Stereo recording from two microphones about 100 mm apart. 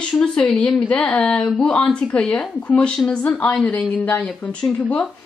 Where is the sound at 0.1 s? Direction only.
10° left (ahead or behind).